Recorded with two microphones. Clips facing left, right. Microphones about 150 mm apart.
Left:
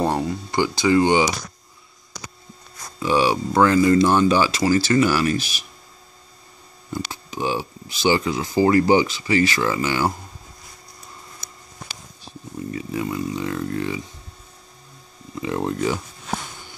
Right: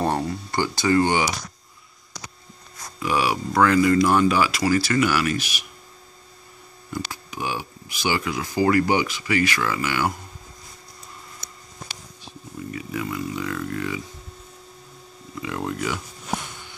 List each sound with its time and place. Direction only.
0.0 s a sound: 15° left (ahead or behind)
3.0 s speech: 30° left (ahead or behind)
6.9 s speech: 25° left (ahead or behind)
12.5 s speech: 30° left (ahead or behind)
15.4 s speech: 30° left (ahead or behind)